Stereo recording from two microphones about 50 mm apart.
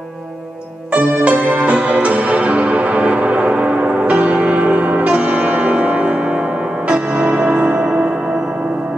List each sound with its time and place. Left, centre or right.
0.9 s music: right
7.8 s music: centre